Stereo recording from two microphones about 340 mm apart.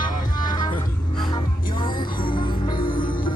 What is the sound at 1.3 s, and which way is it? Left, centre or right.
Music, centre.